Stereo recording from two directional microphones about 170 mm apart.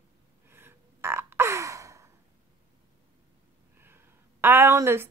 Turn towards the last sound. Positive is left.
turn(degrees=-15)  # may be behind; listen again after turning